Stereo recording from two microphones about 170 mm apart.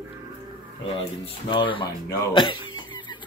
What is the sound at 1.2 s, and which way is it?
Speech, 30° left (ahead or behind).